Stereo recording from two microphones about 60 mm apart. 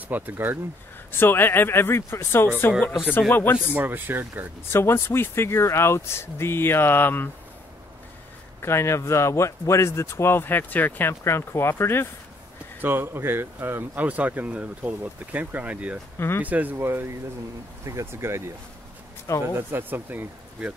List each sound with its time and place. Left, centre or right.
0.1 s speech: right
1.1 s speech: left
3.2 s speech: left
3.7 s speech: right
4.6 s speech: left
8.6 s speech: left
11.2 s speech: left
12.8 s speech: right
14.0 s speech: right
16.2 s speech: left
16.4 s speech: right
16.7 s speech: right
17.8 s speech: right
19.4 s speech: right